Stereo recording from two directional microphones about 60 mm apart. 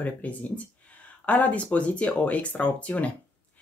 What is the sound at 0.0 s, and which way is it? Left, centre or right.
Speech, left.